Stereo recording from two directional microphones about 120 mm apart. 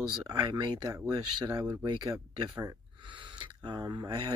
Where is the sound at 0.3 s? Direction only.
35° right (ahead or behind).